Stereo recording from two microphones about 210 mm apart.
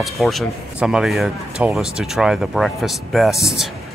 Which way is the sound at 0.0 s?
Centre (ahead or behind).